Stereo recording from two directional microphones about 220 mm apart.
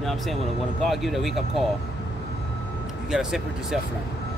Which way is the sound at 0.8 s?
Centre (ahead or behind).